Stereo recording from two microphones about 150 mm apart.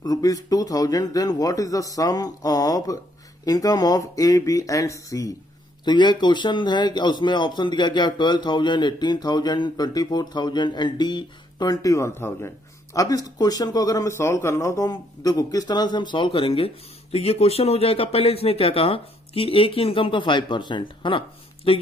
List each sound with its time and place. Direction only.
0.0 s speech: 25° left (ahead or behind)